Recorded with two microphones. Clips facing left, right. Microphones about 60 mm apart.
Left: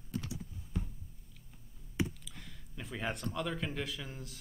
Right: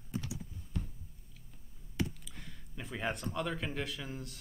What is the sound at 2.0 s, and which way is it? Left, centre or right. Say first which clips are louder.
Computer keyboard: left 1 dB; centre.